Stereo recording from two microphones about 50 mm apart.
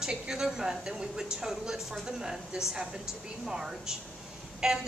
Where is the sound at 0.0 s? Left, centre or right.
Centre.